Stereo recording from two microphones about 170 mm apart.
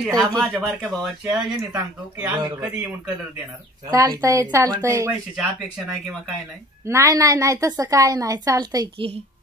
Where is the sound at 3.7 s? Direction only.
20° right (ahead or behind).